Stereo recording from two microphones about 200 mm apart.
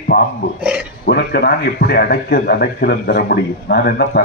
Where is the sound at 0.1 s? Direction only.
50° left (ahead or behind).